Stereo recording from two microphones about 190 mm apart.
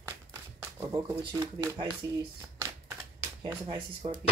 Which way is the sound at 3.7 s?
25° right (ahead or behind).